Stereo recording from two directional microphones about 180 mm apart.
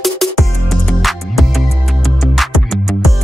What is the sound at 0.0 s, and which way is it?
Music, centre (ahead or behind).